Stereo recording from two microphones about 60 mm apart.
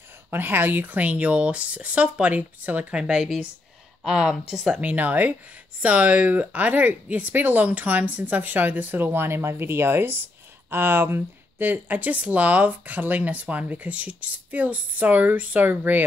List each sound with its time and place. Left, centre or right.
0.3 s speech: right
2.9 s speech: centre
4.7 s speech: right